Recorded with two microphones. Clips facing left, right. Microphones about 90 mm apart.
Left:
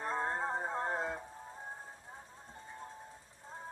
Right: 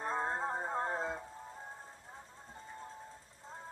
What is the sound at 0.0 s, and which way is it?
Music, 15° right (ahead or behind).